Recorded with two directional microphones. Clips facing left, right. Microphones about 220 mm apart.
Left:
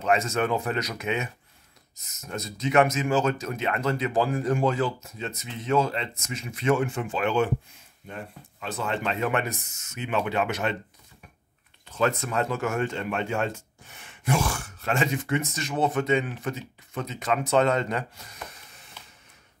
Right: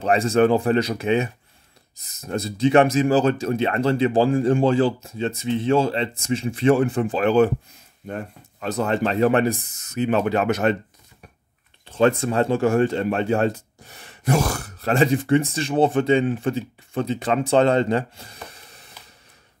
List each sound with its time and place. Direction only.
0.0 s speech: 35° right (ahead or behind)
11.8 s speech: 30° right (ahead or behind)